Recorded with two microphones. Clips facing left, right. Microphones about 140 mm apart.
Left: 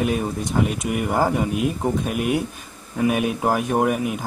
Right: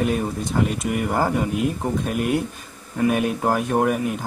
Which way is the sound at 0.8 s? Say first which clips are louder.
Left 1 dB; 15° left (ahead or behind).